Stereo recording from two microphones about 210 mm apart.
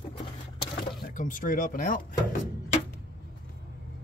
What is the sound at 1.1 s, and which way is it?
Speech, 40° left (ahead or behind).